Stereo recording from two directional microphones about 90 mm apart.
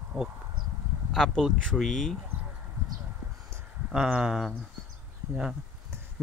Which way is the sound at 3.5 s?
30° right (ahead or behind).